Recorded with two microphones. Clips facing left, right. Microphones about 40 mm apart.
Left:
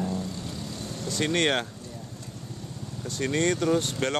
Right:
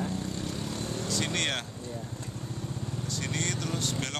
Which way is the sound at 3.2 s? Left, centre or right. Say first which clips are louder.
Left 10 dB; centre.